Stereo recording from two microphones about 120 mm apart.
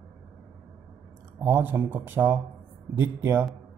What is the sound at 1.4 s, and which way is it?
Speech, 20° right (ahead or behind).